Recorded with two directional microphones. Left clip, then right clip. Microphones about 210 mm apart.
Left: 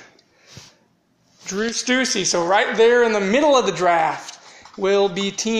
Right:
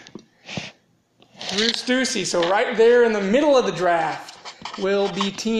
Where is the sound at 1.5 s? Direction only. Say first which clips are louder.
Even; 25° left (ahead or behind).